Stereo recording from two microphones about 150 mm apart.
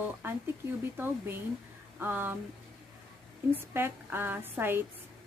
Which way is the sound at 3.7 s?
15° right (ahead or behind).